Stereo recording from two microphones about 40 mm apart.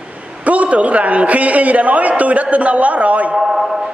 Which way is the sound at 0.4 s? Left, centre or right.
Right.